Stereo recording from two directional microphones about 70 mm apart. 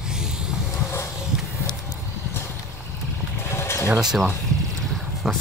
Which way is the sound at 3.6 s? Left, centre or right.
Left.